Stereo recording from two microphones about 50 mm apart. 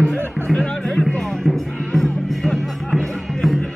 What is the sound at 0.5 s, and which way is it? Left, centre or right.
Music, left.